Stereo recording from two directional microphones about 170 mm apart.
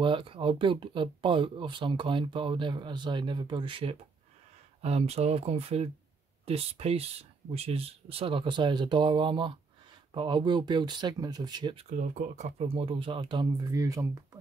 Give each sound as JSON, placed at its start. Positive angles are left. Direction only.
{"t": 0.0, "sound": "speech", "side_deg": -30}
{"t": 12.0, "sound": "speech", "side_deg": -45}